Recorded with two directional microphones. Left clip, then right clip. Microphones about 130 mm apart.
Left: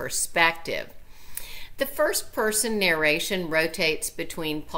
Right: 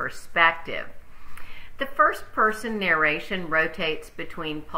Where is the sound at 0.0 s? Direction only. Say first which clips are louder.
Right 2 dB; 40° left (ahead or behind).